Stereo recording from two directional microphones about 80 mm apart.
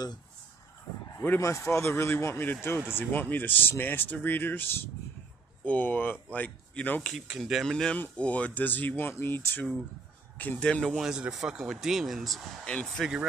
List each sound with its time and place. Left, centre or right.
1.4 s speech: left; by 7.2 s centre
7.2 s speech: centre
7.7 s speech: centre
11.0 s speech: centre
12.6 s speech: centre